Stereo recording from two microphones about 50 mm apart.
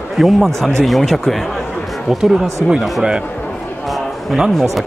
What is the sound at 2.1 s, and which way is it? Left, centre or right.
Speech, centre.